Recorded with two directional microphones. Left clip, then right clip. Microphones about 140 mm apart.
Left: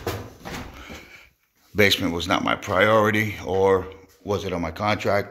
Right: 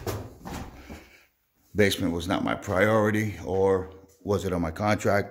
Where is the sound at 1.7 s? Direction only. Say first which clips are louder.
Left 5 dB; 25° right (ahead or behind).